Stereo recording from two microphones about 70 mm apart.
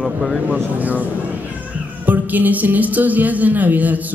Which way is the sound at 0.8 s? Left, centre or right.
Right.